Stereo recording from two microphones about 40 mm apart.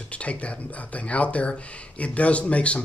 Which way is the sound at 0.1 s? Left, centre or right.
Left.